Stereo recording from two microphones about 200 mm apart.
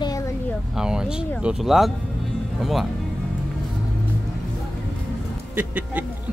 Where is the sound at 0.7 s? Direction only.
5° right (ahead or behind).